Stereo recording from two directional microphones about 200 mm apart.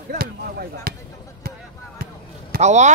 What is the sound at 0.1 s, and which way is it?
Speech, 50° right (ahead or behind).